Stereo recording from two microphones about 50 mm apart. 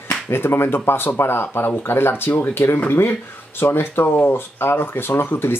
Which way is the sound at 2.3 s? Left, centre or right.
Left.